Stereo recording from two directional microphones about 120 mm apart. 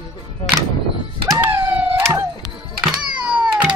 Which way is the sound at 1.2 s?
20° right (ahead or behind).